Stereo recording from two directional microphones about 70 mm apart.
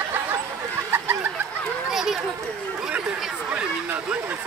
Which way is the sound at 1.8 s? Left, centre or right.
Centre.